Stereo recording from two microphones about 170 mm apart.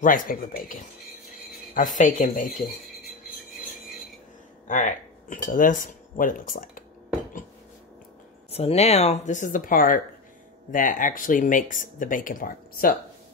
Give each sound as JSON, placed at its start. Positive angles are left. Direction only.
{"t": 0.0, "sound": "speech", "side_deg": 55}
{"t": 4.6, "sound": "speech", "side_deg": 50}
{"t": 8.5, "sound": "speech", "side_deg": 35}